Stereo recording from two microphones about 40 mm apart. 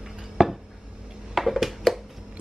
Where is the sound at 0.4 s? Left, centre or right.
Centre.